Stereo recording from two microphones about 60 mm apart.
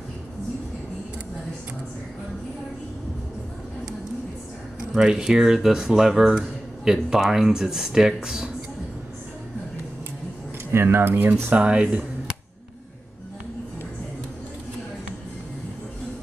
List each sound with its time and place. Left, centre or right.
4.9 s speech: centre
10.7 s speech: right
11.5 s speech: centre